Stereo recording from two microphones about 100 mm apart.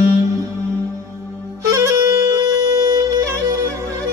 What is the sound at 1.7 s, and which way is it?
Music, 35° right (ahead or behind).